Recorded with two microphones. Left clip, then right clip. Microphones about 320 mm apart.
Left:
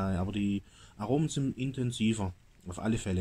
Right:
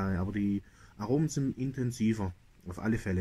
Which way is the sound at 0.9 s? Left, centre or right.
Centre.